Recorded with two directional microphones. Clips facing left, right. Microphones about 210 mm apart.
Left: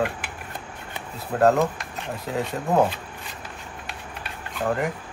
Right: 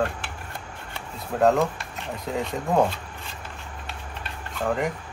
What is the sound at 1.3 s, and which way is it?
Speech, centre (ahead or behind).